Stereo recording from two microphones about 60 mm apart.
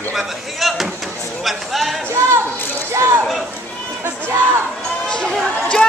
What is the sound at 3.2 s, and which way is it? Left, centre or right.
Speech, centre.